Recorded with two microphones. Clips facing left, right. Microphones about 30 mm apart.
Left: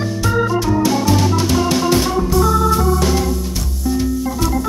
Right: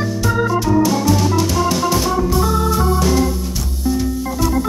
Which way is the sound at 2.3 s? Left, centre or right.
Centre.